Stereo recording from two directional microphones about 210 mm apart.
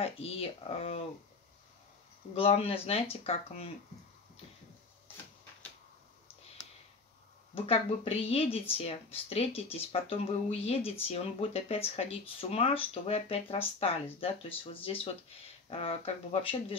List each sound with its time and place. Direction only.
0.0 s speech: 30° left (ahead or behind)
2.3 s speech: 25° left (ahead or behind)
7.5 s speech: 30° left (ahead or behind)